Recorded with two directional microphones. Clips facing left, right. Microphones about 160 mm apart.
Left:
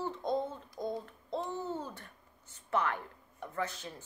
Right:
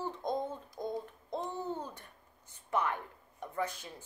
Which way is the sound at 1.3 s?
15° right (ahead or behind).